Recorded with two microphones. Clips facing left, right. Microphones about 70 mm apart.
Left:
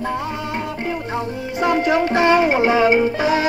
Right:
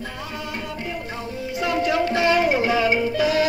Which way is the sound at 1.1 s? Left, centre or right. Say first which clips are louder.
Left 5 dB; left.